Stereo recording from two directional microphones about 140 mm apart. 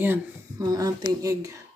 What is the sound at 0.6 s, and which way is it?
Speech, 25° right (ahead or behind).